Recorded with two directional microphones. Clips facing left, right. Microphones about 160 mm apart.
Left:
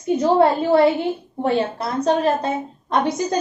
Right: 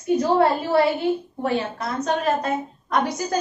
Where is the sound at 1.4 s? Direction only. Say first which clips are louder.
Left 7 dB; 30° left (ahead or behind).